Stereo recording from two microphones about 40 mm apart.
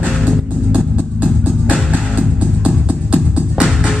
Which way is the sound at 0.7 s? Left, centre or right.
Right.